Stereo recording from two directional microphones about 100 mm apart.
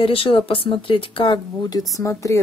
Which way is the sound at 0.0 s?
65° left (ahead or behind).